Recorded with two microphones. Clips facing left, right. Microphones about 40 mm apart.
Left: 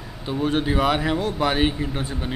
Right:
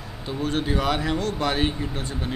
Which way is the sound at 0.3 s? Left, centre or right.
Centre.